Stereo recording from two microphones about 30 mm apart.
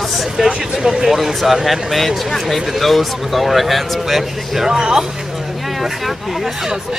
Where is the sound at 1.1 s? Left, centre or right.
Centre.